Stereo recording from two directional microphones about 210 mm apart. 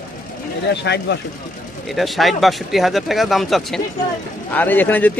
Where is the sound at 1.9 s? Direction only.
Centre (ahead or behind).